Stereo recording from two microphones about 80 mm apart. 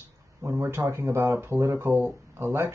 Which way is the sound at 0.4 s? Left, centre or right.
Right.